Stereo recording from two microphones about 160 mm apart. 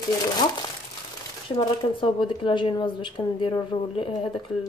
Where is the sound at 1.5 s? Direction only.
30° left (ahead or behind).